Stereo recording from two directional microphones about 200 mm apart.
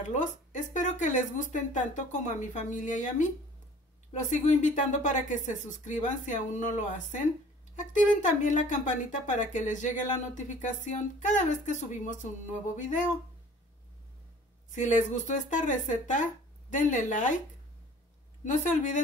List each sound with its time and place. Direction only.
0.0 s a sound: 40° left (ahead or behind)
0.5 s speech: 40° left (ahead or behind)
14.7 s speech: 35° left (ahead or behind)
18.4 s speech: 40° left (ahead or behind)